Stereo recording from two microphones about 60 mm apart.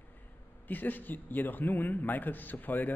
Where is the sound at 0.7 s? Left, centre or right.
Left.